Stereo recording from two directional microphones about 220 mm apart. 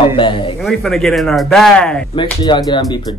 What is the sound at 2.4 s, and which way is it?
Speech, 20° left (ahead or behind).